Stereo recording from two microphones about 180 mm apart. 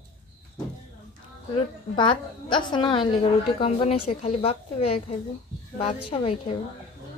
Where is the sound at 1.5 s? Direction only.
25° left (ahead or behind).